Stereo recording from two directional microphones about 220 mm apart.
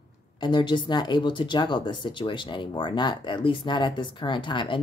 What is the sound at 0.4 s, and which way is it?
Speech, 20° left (ahead or behind).